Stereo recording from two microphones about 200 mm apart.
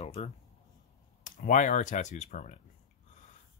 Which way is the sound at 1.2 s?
40° left (ahead or behind).